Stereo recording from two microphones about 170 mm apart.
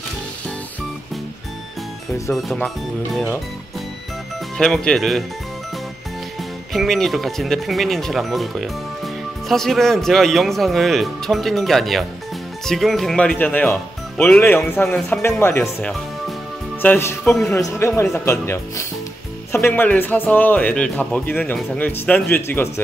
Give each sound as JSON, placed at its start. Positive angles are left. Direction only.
{"t": 2.3, "sound": "speech", "side_deg": 0}
{"t": 4.6, "sound": "speech", "side_deg": 5}
{"t": 6.7, "sound": "speech", "side_deg": 0}
{"t": 17.3, "sound": "speech", "side_deg": 0}
{"t": 17.6, "sound": "speech", "side_deg": 20}